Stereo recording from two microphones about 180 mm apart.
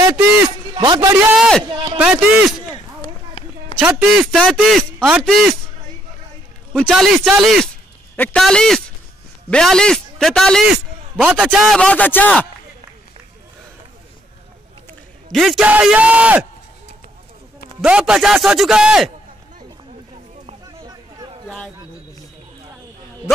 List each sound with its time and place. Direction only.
0.1 s a man's voice: 10° right (ahead or behind)
0.7 s speech: 25° right (ahead or behind)
1.3 s a man's voice: 5° right (ahead or behind)
1.7 s a man's voice: 25° right (ahead or behind)
2.0 s a man's voice: 5° right (ahead or behind)
3.8 s a man's voice: 5° right (ahead or behind)
6.7 s a man's voice: 5° left (ahead or behind)
15.3 s a man's voice: centre (ahead or behind)
17.8 s a man's voice: 5° right (ahead or behind)
20.6 s a sound: 20° right (ahead or behind)